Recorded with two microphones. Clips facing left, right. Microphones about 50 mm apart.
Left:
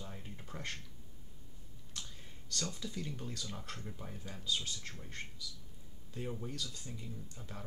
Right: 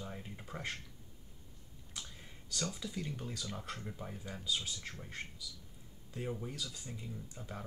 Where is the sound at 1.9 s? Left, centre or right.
Centre.